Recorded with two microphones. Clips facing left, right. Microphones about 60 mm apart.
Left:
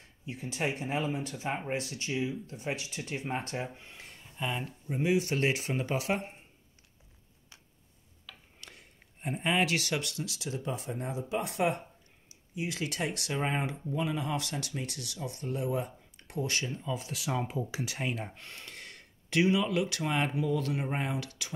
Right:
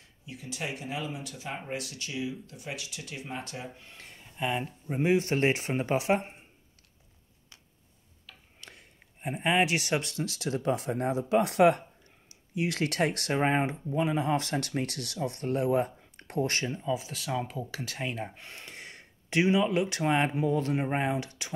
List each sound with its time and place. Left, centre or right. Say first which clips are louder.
0.2 s speech: left 4 dB; left
3.9 s speech: even; centre
4.4 s speech: right 4 dB; centre
4.8 s speech: right 2 dB; right
8.5 s a sound: right 4 dB; centre
9.2 s speech: right 3 dB; centre
10.2 s speech: right 7 dB; right
16.7 s speech: right 5 dB; centre
17.0 s speech: right 1 dB; centre
18.3 s speech: right 1 dB; centre